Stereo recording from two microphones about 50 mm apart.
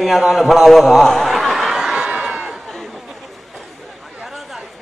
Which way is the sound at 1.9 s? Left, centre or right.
Centre.